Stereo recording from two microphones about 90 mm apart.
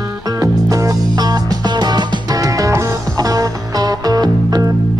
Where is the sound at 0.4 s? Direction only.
40° right (ahead or behind).